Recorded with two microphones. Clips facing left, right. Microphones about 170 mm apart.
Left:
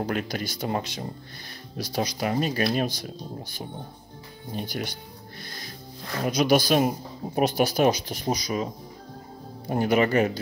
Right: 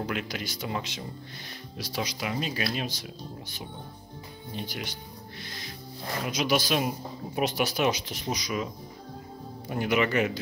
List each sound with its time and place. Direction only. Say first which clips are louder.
0.0 s speech: left 4 dB; 40° left (ahead or behind)
6.2 s speech: left 6 dB; 45° left (ahead or behind)
9.7 s speech: left 4 dB; 40° left (ahead or behind)